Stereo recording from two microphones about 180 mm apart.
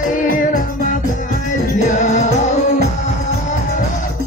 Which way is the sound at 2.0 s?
40° left (ahead or behind).